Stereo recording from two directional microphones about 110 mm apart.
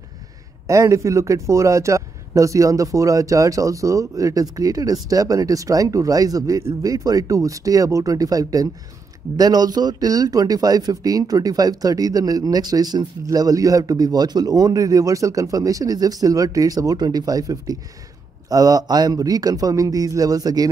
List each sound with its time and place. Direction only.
0.7 s speech: 30° right (ahead or behind)